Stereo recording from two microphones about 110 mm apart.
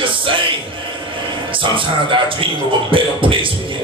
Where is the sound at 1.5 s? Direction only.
50° right (ahead or behind).